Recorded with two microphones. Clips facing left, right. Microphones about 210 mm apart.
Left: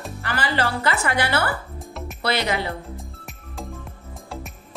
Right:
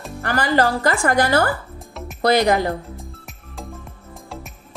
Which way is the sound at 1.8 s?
Centre (ahead or behind).